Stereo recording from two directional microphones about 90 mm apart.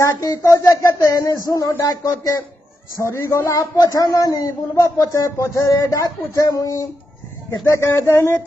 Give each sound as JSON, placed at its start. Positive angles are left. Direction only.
{"t": 0.0, "sound": "speech", "side_deg": 35}